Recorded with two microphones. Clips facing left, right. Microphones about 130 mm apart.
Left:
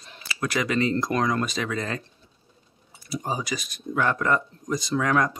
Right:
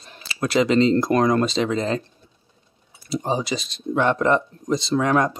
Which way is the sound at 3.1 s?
25° right (ahead or behind).